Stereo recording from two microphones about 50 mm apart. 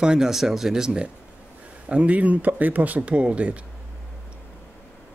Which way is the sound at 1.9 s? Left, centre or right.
Right.